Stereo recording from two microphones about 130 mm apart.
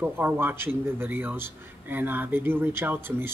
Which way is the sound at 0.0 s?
15° right (ahead or behind).